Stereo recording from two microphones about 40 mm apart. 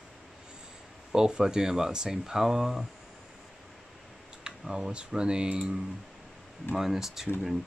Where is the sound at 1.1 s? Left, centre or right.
Centre.